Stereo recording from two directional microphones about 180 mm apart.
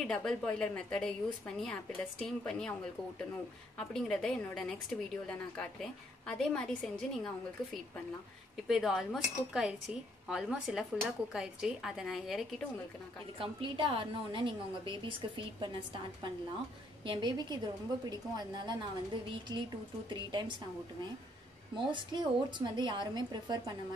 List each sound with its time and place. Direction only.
0.0 s speech: 5° left (ahead or behind)
8.6 s speech: centre (ahead or behind)
13.4 s a woman's voice: 30° right (ahead or behind)
17.0 s a woman's voice: 25° right (ahead or behind)
21.7 s a woman's voice: 25° right (ahead or behind)